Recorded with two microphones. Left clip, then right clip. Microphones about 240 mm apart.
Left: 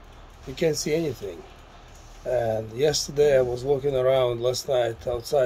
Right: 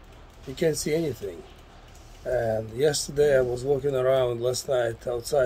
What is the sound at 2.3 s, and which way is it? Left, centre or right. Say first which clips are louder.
Speech: left 1 dB; centre.